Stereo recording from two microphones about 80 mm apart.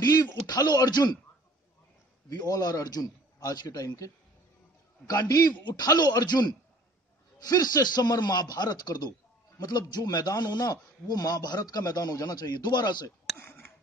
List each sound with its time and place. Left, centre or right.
0.0 s a man's voice: left
2.2 s a man's voice: left
5.0 s a man's voice: left
13.4 s a sound: left